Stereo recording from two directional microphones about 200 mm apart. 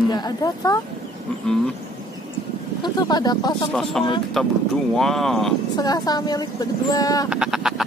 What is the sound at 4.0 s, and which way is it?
Speech, 5° left (ahead or behind).